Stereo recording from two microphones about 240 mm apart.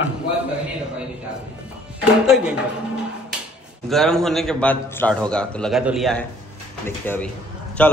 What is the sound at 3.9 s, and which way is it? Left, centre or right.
A man's voice, centre.